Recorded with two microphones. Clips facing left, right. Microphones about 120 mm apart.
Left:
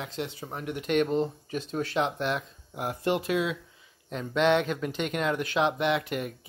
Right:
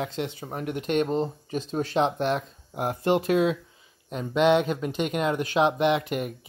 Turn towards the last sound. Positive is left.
turn(degrees=-20)  # may be behind; listen again after turning